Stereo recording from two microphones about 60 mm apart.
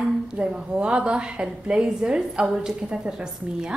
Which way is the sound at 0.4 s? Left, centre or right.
Centre.